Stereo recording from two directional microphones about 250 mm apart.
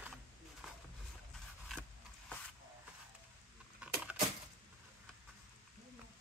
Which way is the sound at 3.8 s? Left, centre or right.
Centre.